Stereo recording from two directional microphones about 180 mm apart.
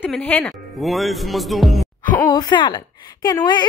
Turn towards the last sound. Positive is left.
turn(degrees=20)  # may be behind; listen again after turning